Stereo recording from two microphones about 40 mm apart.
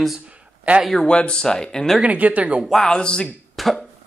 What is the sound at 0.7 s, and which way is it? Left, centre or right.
Speech, right.